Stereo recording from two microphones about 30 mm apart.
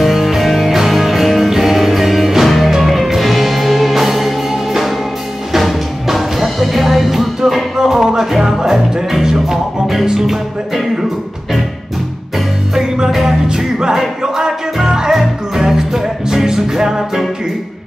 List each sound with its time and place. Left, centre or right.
0.0 s music: centre
6.0 s music: centre
13.9 s music: right